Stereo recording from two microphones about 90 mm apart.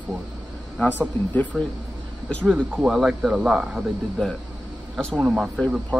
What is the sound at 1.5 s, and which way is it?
Speech, centre (ahead or behind).